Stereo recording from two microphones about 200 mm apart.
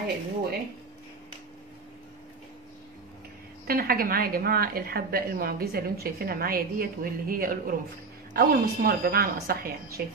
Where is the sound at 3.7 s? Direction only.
50° right (ahead or behind).